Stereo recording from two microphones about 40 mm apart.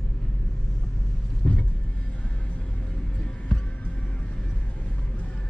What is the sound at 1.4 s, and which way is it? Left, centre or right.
Vehicle, left.